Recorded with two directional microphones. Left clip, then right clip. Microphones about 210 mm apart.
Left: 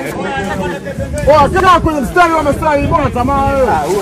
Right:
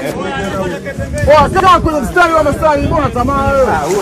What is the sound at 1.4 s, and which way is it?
Speech, 25° left (ahead or behind).